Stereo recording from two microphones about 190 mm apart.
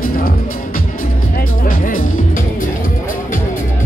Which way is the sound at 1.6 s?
45° left (ahead or behind).